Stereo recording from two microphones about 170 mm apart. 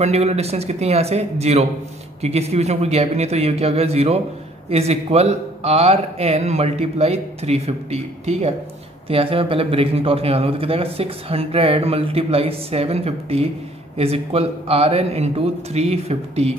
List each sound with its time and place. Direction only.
0.0 s a man's voice: 40° right (ahead or behind)